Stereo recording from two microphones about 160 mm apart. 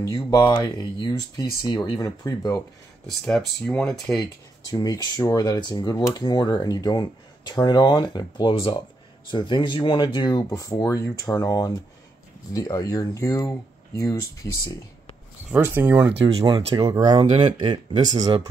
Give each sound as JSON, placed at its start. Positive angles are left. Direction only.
{"t": 0.3, "sound": "speech", "side_deg": 25}
{"t": 3.1, "sound": "speech", "side_deg": 5}
{"t": 4.7, "sound": "speech", "side_deg": 25}
{"t": 15.5, "sound": "speech", "side_deg": -15}
{"t": 16.2, "sound": "speech", "side_deg": -40}
{"t": 16.4, "sound": "speech", "side_deg": -30}